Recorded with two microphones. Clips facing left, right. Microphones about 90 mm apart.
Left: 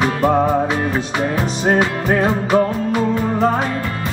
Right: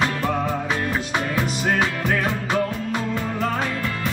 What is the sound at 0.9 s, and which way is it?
Music, 25° left (ahead or behind).